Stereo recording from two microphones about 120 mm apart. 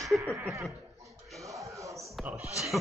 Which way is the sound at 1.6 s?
25° right (ahead or behind).